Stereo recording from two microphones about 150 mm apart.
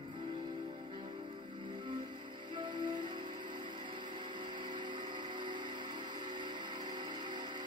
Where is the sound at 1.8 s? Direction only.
35° right (ahead or behind).